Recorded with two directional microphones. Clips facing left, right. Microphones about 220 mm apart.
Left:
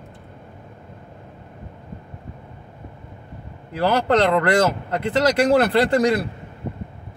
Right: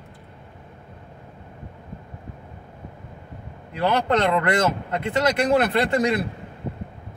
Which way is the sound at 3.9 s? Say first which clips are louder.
Left 3 dB; 35° left (ahead or behind).